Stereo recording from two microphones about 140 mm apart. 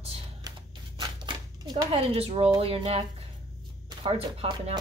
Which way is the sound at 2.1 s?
45° right (ahead or behind).